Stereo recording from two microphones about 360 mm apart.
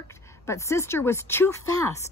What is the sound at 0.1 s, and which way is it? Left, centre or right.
Speech, centre.